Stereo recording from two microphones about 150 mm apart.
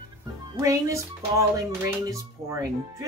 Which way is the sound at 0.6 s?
20° right (ahead or behind).